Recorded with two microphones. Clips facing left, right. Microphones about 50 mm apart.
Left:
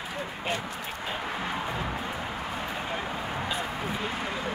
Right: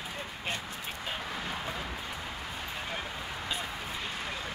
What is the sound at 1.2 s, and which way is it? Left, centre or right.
Music, left.